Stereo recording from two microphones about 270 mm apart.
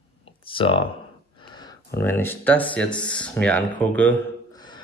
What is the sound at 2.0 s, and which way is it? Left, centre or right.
Speech, centre.